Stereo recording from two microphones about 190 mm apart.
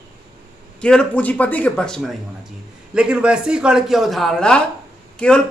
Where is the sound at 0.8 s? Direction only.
5° left (ahead or behind).